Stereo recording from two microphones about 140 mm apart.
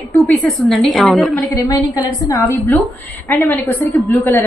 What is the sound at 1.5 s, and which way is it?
Speech, 25° left (ahead or behind).